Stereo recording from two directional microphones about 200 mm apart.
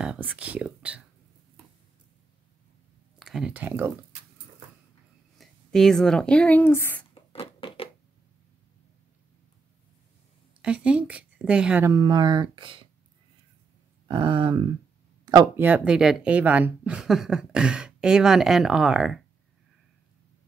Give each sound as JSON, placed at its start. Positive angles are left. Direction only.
{"t": 0.0, "sound": "speech", "side_deg": -5}
{"t": 3.2, "sound": "speech", "side_deg": 0}
{"t": 5.4, "sound": "speech", "side_deg": 0}
{"t": 7.3, "sound": "a sound", "side_deg": 25}
{"t": 10.6, "sound": "speech", "side_deg": -5}
{"t": 14.0, "sound": "a sound", "side_deg": -25}
{"t": 15.2, "sound": "speech", "side_deg": -20}
{"t": 15.6, "sound": "speech", "side_deg": -5}